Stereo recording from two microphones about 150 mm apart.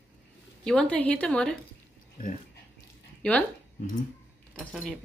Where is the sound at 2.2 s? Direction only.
70° left (ahead or behind).